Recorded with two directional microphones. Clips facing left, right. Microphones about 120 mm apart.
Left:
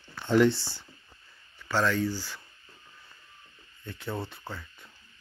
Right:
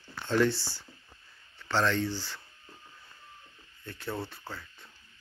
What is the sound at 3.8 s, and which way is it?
Speech, 15° left (ahead or behind).